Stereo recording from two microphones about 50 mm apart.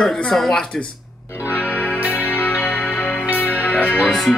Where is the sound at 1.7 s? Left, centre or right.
Left.